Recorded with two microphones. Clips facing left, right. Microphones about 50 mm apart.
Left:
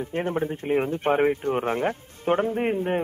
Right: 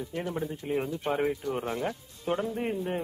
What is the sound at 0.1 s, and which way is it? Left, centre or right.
Speech, left.